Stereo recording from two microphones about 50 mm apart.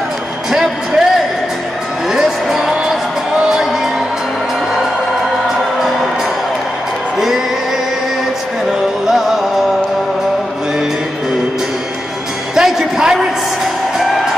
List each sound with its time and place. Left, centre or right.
0.5 s music: centre
2.0 s music: centre
5.6 s music: centre
7.2 s music: centre
9.0 s music: centre
12.5 s music: centre